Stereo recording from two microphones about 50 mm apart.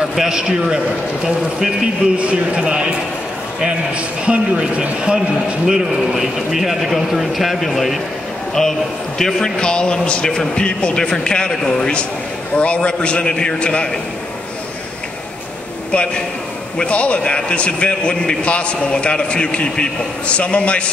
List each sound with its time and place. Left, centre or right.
0.3 s a man's voice: centre
9.2 s a man's voice: centre
15.9 s a man's voice: left